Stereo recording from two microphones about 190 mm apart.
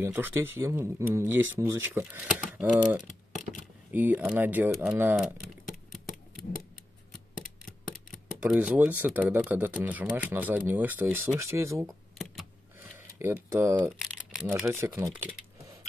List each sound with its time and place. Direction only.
0.0 s speech: 10° right (ahead or behind)
7.6 s camera: 5° right (ahead or behind)
9.3 s speech: 10° right (ahead or behind)
11.8 s computer keyboard: centre (ahead or behind)
13.2 s speech: 10° right (ahead or behind)
13.8 s camera: centre (ahead or behind)
14.7 s speech: 15° right (ahead or behind)